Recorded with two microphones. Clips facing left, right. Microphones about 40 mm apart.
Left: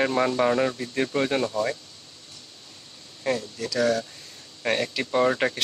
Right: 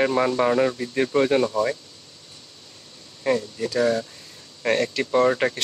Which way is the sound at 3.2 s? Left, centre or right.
Centre.